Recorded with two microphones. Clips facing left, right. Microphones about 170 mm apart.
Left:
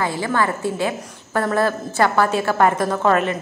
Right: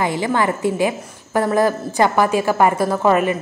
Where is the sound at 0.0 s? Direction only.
20° right (ahead or behind).